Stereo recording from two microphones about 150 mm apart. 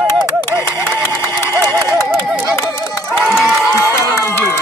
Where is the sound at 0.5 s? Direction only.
10° right (ahead or behind).